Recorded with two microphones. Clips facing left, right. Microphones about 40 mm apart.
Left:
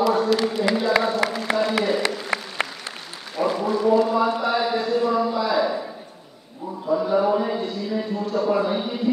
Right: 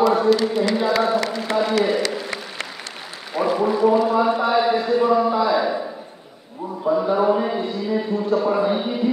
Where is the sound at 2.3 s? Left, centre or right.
Centre.